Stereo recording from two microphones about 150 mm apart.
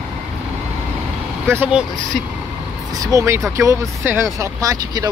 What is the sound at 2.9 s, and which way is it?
Speech, 20° right (ahead or behind).